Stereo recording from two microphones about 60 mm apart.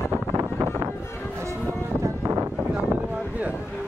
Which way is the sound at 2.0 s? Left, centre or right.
Right.